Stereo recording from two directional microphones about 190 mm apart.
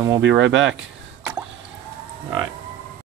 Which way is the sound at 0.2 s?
90° right.